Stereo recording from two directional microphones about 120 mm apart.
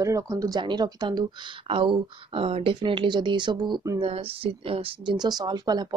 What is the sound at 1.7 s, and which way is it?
Speech, 45° right (ahead or behind).